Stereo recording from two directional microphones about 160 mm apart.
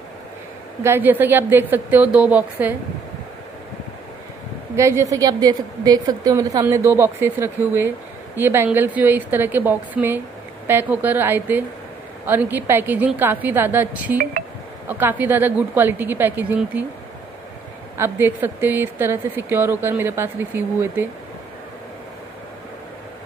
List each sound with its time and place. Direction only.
0.8 s speech: 10° right (ahead or behind)
4.7 s speech: 15° right (ahead or behind)
17.9 s speech: 15° right (ahead or behind)